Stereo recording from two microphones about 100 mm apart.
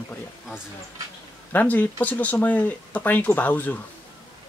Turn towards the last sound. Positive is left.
turn(degrees=15)  # may be behind; listen again after turning